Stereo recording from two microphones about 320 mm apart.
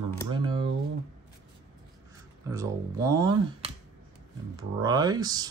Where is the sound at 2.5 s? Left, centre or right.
Centre.